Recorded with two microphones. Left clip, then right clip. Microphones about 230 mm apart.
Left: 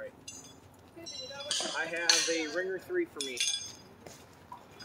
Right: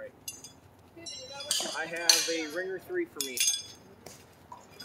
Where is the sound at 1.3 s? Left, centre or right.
Right.